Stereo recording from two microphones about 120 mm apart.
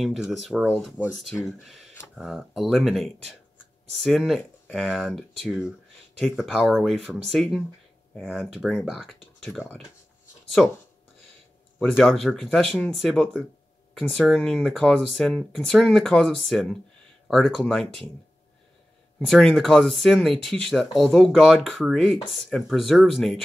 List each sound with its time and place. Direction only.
0.0 s speech: 5° right (ahead or behind)
11.8 s speech: 5° left (ahead or behind)
19.1 s speech: 5° left (ahead or behind)